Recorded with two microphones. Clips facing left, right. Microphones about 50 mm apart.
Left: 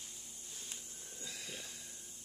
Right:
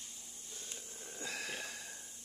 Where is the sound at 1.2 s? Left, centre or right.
Right.